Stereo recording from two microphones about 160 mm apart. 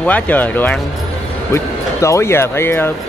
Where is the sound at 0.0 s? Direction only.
10° left (ahead or behind).